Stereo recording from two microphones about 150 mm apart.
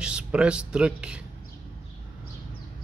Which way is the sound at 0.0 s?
5° right (ahead or behind).